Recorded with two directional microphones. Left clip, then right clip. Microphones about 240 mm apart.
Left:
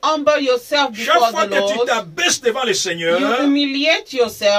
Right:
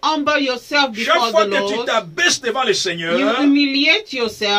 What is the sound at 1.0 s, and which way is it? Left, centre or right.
A man's voice, centre.